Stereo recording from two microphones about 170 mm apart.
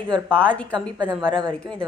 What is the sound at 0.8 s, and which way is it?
Speech, 25° right (ahead or behind).